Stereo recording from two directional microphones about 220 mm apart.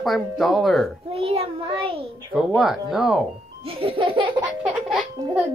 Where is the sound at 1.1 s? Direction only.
25° right (ahead or behind).